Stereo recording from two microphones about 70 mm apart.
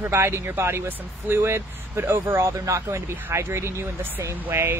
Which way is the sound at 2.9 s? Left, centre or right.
Right.